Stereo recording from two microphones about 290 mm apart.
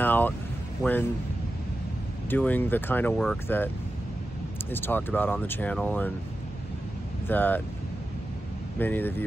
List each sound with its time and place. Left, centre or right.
0.0 s vehicle: centre
2.2 s speech: centre
7.2 s speech: centre
8.7 s speech: centre